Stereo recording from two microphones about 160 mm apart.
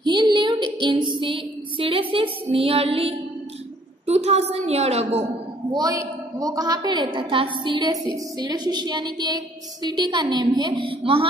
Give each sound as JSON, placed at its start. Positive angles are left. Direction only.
{"t": 0.0, "sound": "child singing", "side_deg": -30}
{"t": 1.1, "sound": "a sound", "side_deg": -30}
{"t": 5.7, "sound": "a woman's voice", "side_deg": -25}